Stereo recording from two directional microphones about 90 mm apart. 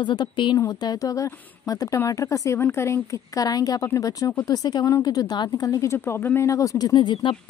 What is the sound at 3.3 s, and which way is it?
Speech, 45° left (ahead or behind).